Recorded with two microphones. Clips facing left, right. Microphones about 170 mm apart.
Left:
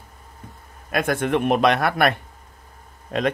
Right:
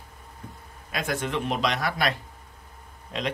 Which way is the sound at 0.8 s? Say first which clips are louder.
Left 7 dB; 55° left (ahead or behind).